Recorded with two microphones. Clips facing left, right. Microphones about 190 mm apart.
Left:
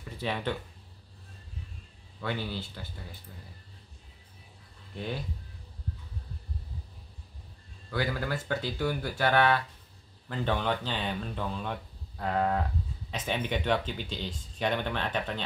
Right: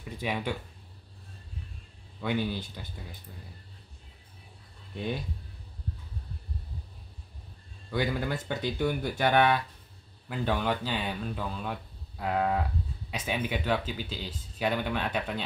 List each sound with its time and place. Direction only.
0.2 s speech: 10° right (ahead or behind)
2.2 s speech: 15° right (ahead or behind)
7.9 s speech: 20° right (ahead or behind)